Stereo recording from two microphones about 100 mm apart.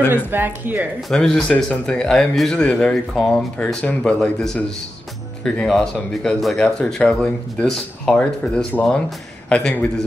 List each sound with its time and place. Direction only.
0.1 s speech: 20° right (ahead or behind)
1.1 s speech: 5° left (ahead or behind)